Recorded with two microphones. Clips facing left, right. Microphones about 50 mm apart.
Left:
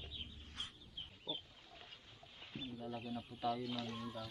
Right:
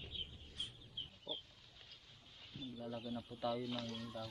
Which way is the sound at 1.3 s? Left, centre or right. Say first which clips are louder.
Left 2 dB; right.